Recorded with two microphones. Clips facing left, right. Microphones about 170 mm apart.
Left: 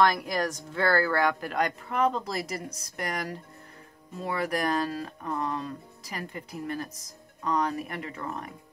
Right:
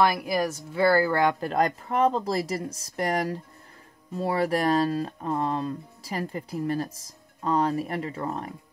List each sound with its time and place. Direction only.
0.0 s speech: 10° right (ahead or behind); by 8.5 s 30° right (ahead or behind)